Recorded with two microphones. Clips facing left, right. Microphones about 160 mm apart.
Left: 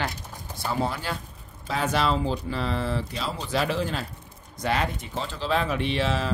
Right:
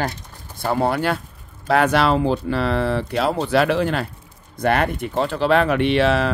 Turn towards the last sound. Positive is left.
turn(degrees=-70)  # may be behind; listen again after turning